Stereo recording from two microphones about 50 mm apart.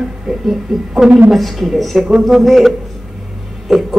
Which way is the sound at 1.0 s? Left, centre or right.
Right.